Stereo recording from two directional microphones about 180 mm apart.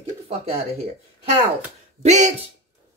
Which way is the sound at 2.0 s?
40° right (ahead or behind).